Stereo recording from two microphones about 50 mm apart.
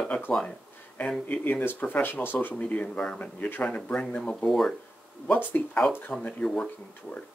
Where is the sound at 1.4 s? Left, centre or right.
Left.